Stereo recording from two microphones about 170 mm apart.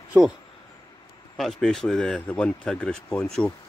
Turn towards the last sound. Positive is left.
turn(degrees=5)  # may be behind; listen again after turning